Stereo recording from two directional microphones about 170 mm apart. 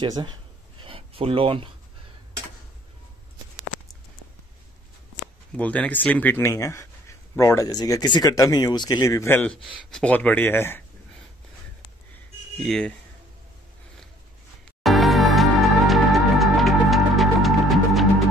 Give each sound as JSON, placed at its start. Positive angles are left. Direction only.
{"t": 0.0, "sound": "a sound", "side_deg": -25}
{"t": 5.6, "sound": "speech", "side_deg": 10}
{"t": 12.6, "sound": "speech", "side_deg": 5}
{"t": 14.8, "sound": "music", "side_deg": 0}